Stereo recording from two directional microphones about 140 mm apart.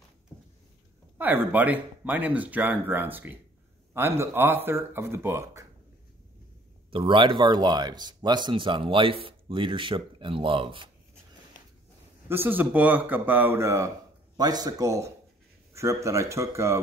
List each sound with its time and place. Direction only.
1.1 s speech: 15° right (ahead or behind)
6.9 s speech: 40° right (ahead or behind)
12.3 s speech: 15° right (ahead or behind)